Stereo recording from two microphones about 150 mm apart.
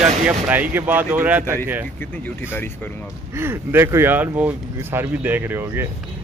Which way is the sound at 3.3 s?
15° right (ahead or behind).